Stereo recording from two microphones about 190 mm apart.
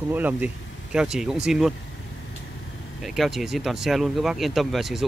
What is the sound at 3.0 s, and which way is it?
Speech, centre (ahead or behind).